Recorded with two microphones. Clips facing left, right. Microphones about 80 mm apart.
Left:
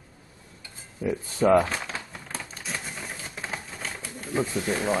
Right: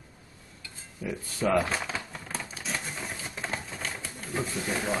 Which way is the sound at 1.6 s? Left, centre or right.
Centre.